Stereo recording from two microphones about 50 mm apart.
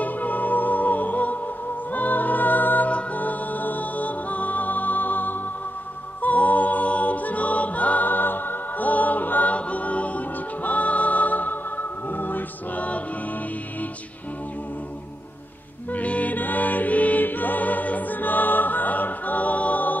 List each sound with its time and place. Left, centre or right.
0.0 s music: left
6.2 s a capella: left
15.9 s music: left